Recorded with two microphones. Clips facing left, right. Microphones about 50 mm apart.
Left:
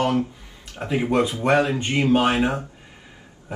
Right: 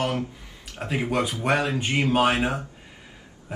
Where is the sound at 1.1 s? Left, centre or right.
Left.